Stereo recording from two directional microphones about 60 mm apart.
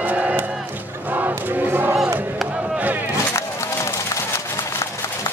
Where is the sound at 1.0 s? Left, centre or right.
Right.